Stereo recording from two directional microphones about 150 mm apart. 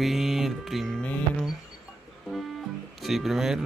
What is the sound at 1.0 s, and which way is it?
Speech, 10° left (ahead or behind).